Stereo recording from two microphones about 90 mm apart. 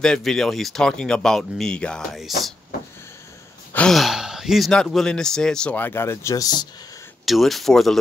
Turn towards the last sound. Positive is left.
turn(degrees=5)  # may be behind; listen again after turning